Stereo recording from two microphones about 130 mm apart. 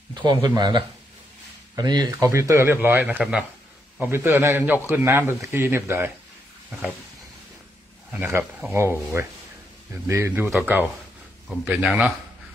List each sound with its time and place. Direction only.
0.1 s speech: 35° right (ahead or behind); by 6.1 s 20° right (ahead or behind)
8.1 s speech: 15° right (ahead or behind)